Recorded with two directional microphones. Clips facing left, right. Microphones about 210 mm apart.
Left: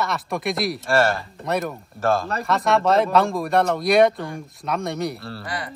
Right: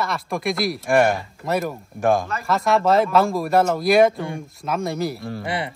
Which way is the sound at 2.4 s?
Centre (ahead or behind).